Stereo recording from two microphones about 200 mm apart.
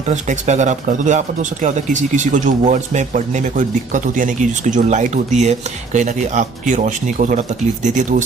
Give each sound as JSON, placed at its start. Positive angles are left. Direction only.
{"t": 0.1, "sound": "speech", "side_deg": -35}